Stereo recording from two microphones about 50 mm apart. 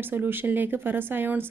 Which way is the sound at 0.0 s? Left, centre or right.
Right.